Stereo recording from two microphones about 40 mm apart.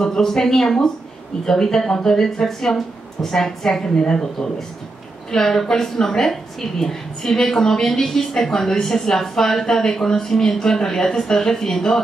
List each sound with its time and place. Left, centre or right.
0.0 s a woman's voice: centre